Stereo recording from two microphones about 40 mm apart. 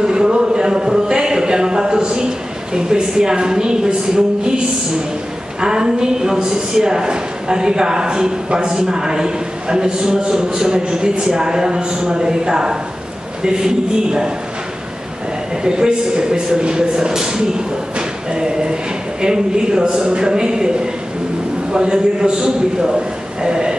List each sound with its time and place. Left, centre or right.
0.0 s a sound: centre
2.7 s a man's voice: centre
15.6 s a man's voice: centre